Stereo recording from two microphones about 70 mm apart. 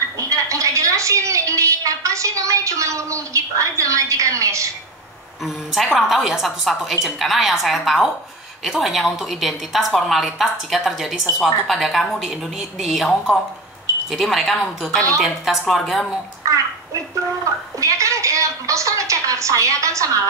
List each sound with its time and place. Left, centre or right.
0.2 s speech: right
5.4 s a woman's voice: centre
14.1 s a woman's voice: centre
17.7 s speech: right